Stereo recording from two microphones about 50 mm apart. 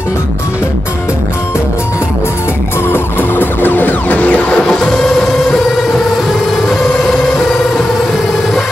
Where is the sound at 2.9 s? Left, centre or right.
Left.